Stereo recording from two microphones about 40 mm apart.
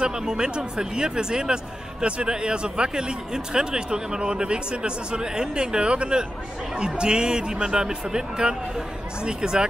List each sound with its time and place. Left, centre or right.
0.0 s speech: centre